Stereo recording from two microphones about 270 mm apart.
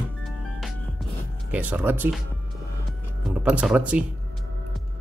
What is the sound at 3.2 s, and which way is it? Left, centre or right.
Speech, centre.